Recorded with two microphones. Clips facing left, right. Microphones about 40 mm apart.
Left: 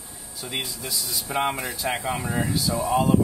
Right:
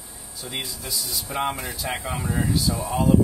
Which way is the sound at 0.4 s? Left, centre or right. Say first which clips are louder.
Left 1 dB; centre.